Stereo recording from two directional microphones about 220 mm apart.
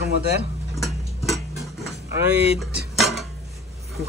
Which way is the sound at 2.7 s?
Centre (ahead or behind).